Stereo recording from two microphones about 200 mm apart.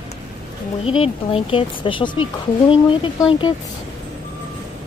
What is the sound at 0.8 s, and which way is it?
Speech, 30° left (ahead or behind).